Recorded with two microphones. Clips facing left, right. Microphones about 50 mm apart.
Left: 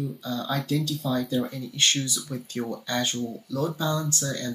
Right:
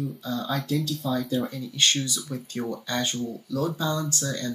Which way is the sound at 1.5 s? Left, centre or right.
Left.